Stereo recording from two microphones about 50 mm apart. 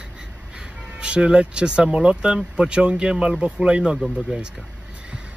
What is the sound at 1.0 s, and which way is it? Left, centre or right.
Speech, centre.